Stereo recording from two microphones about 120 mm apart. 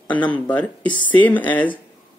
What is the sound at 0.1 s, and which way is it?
Speech, 15° left (ahead or behind).